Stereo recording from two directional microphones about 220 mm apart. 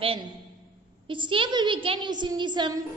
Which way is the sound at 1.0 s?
20° right (ahead or behind).